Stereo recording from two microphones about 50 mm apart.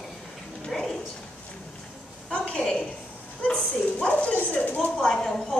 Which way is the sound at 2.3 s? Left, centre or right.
Left.